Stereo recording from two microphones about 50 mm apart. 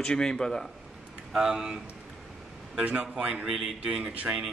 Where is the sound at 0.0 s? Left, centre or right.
Centre.